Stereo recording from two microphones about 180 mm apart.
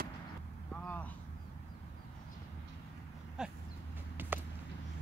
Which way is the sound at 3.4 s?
5° right (ahead or behind).